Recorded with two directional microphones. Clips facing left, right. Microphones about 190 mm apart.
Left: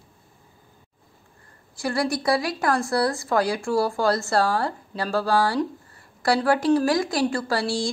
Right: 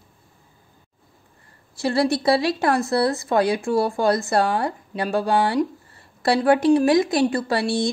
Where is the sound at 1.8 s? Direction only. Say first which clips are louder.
Right 4 dB; 25° right (ahead or behind).